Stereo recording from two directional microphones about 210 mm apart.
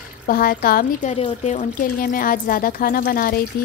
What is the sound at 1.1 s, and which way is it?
A woman's voice, 30° left (ahead or behind).